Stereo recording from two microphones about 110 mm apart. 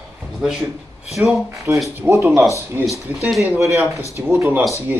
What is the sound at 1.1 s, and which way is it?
Speech, centre (ahead or behind).